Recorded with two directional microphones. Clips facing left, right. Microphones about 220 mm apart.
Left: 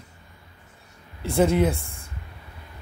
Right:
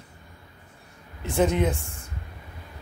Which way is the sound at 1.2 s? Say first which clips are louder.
Left 3 dB; 10° left (ahead or behind).